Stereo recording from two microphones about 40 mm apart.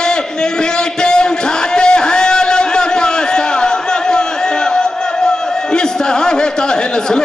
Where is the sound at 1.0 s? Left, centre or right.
Left.